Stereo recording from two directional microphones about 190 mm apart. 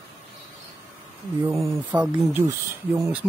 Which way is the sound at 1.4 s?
15° right (ahead or behind).